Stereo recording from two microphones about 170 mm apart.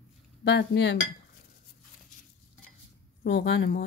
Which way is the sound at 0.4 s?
90° left.